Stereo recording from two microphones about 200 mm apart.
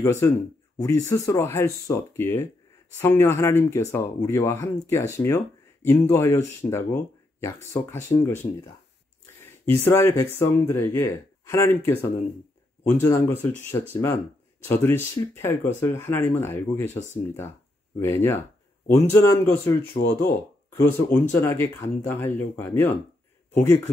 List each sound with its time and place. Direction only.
0.0 s speech: 15° left (ahead or behind)
16.9 s speech: 35° left (ahead or behind)
17.9 s speech: 15° left (ahead or behind)
20.0 s speech: 50° left (ahead or behind)
21.3 s speech: 10° left (ahead or behind)